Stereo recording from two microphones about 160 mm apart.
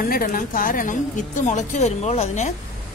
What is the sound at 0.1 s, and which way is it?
A woman's voice, 60° left (ahead or behind).